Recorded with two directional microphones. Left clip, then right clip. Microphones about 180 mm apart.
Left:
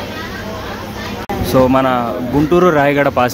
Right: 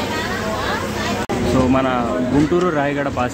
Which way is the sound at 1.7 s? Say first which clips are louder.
Left 4 dB; 25° left (ahead or behind).